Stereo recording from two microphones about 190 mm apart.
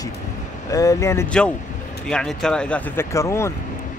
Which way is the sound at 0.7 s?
15° left (ahead or behind).